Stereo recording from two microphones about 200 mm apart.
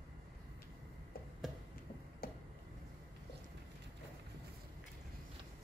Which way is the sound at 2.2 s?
50° left (ahead or behind).